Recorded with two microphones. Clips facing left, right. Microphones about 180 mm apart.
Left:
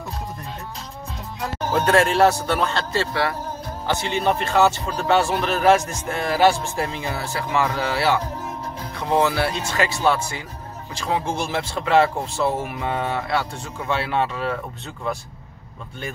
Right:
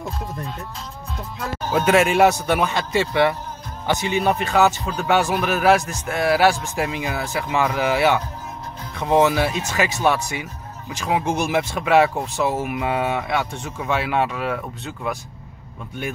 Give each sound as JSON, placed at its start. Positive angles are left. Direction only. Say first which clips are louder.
{"t": 1.7, "sound": "speech", "louder": "right 1 dB", "side_deg": -10}